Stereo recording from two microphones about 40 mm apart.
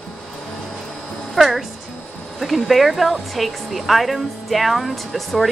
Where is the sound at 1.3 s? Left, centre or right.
Centre.